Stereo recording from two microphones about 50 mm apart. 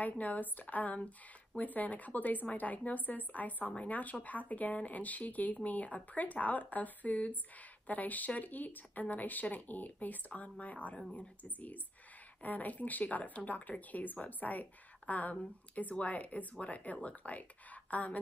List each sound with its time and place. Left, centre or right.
0.0 s speech: left